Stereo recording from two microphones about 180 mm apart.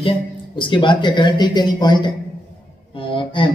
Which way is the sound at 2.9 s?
30° left (ahead or behind).